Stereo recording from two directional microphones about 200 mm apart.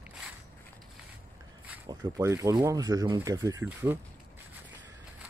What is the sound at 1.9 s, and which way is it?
Speech, 20° right (ahead or behind).